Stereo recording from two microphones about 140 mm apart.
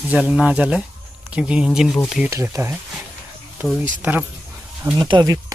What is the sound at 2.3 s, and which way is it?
Speech, 20° right (ahead or behind).